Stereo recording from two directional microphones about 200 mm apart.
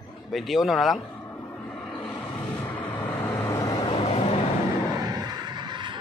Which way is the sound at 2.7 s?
10° left (ahead or behind).